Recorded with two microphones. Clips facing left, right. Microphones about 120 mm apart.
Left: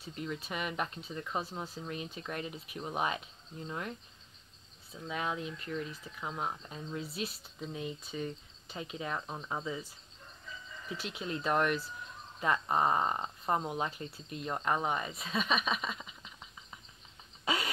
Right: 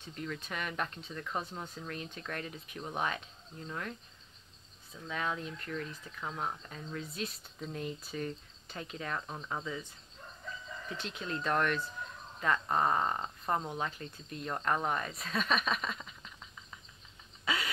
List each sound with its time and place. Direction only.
0.0 s speech: 15° left (ahead or behind)
5.0 s speech: 15° left (ahead or behind)
11.0 s speech: 10° left (ahead or behind)